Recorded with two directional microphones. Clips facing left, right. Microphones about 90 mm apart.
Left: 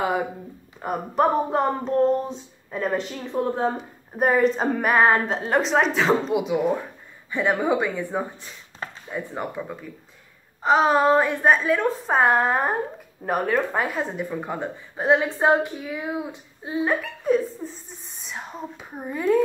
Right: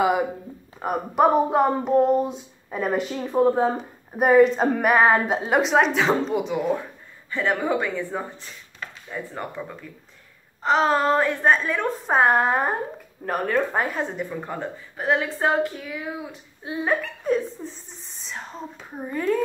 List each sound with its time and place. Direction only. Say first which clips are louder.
1.1 s speech: right 3 dB; 5° right (ahead or behind)
4.2 s a woman's voice: right 4 dB; centre (ahead or behind); by 16.3 s 20° left (ahead or behind)
16.6 s speech: left 1 dB; 5° left (ahead or behind)